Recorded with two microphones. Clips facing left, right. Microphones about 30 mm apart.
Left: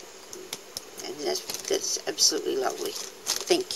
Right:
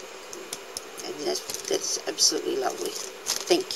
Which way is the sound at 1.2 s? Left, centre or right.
Centre.